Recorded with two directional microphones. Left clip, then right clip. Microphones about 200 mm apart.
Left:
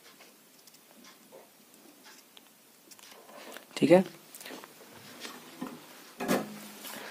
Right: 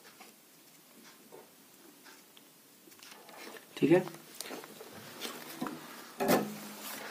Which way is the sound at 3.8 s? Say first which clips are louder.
Left 5 dB; 45° left (ahead or behind).